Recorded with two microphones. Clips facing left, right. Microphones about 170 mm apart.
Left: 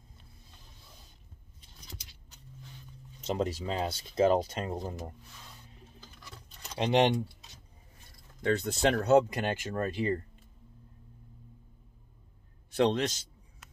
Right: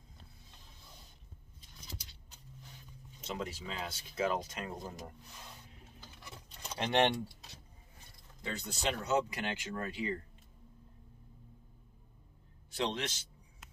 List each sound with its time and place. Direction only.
3.3 s speech: 40° left (ahead or behind)
6.8 s speech: 20° left (ahead or behind)
8.4 s speech: 65° left (ahead or behind)
9.3 s speech: 45° left (ahead or behind)
12.7 s a man's voice: 55° left (ahead or behind)